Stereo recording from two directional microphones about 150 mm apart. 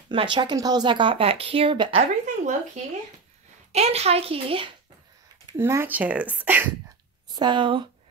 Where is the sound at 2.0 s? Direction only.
55° right (ahead or behind).